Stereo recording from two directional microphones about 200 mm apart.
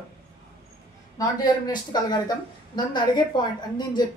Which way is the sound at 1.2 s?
20° left (ahead or behind).